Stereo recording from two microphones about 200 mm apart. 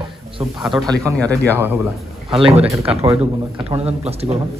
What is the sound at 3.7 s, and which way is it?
Speech, 30° right (ahead or behind).